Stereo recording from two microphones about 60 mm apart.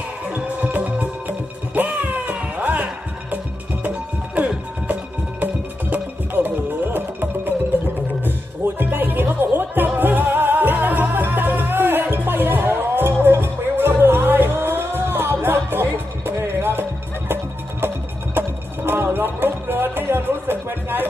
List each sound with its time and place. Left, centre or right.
0.3 s music: right
5.4 s music: right